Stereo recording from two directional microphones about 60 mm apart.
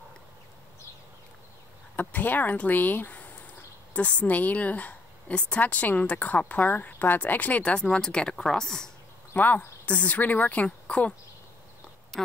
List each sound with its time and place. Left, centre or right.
2.0 s a woman's voice: left; by 8.9 s centre
9.3 s a woman's voice: left